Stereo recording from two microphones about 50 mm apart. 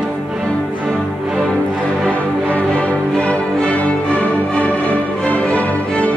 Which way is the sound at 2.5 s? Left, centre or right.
Left.